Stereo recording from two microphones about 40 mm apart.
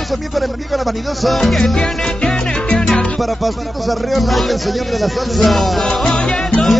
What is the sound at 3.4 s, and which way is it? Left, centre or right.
Music, centre.